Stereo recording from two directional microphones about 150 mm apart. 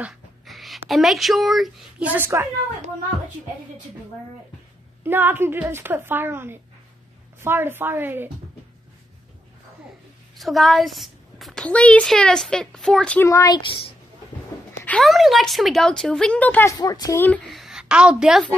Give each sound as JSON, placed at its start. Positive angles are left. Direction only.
{"t": 0.0, "sound": "speech", "side_deg": 0}
{"t": 5.0, "sound": "a woman's voice", "side_deg": -15}
{"t": 10.3, "sound": "a woman's voice", "side_deg": 0}
{"t": 13.2, "sound": "speech", "side_deg": 20}
{"t": 15.0, "sound": "a woman's voice", "side_deg": 0}
{"t": 16.7, "sound": "speech", "side_deg": 25}
{"t": 17.5, "sound": "a woman's voice", "side_deg": 0}